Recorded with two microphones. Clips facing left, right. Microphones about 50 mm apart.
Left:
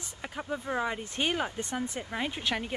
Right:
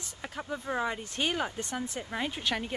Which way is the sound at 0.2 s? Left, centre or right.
Centre.